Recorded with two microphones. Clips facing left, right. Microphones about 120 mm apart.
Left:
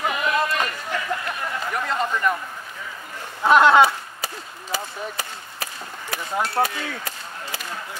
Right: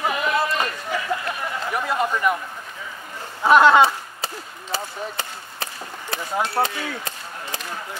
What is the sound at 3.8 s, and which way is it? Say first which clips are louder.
Chop: even; 25° right (ahead or behind).